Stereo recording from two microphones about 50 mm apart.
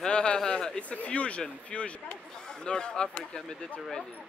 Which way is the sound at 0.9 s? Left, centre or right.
Left.